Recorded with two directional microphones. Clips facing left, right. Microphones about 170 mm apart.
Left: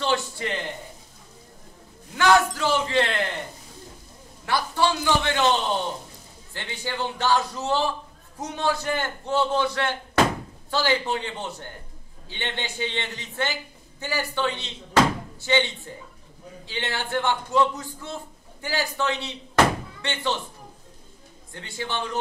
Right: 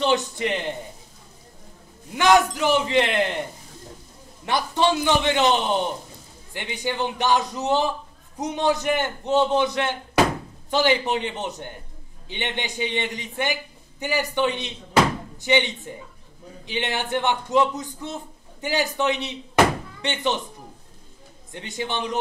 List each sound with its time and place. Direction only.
0.0 s a man's voice: 20° right (ahead or behind)
2.1 s a man's voice: 20° right (ahead or behind)
4.5 s a man's voice: 20° right (ahead or behind)
21.5 s a man's voice: 20° right (ahead or behind)